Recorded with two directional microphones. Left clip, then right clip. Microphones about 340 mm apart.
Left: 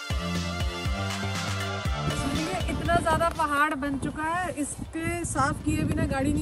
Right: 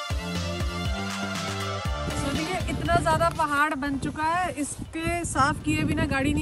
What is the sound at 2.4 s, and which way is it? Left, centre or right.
Speech, centre.